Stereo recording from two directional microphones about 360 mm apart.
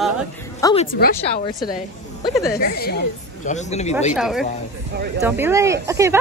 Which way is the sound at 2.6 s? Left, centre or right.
Left.